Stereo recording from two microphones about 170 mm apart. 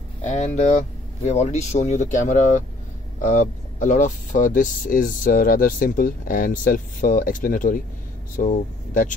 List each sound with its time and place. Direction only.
0.2 s speech: 45° left (ahead or behind)